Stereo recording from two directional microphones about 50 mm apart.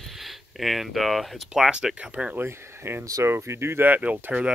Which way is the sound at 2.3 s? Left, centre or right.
Right.